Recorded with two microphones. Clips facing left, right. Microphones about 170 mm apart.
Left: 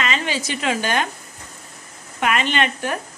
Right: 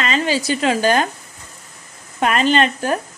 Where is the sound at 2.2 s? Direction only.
35° right (ahead or behind).